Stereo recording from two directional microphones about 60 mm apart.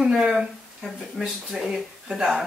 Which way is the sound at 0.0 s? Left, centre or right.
Centre.